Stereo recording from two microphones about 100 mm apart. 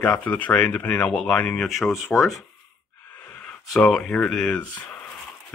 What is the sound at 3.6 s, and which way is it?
Speech, 5° left (ahead or behind).